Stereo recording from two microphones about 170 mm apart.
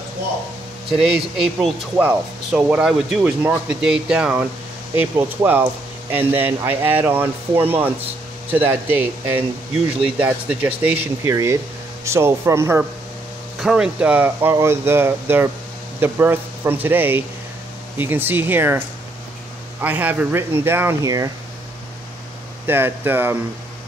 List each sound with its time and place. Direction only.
1.3 s speech: 5° right (ahead or behind)
13.6 s speech: 5° right (ahead or behind)
19.8 s speech: 10° right (ahead or behind)
22.7 s speech: 10° right (ahead or behind)